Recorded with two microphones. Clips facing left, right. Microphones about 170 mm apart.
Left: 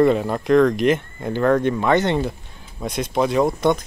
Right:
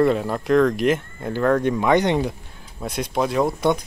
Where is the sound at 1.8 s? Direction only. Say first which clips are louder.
Even; 15° right (ahead or behind).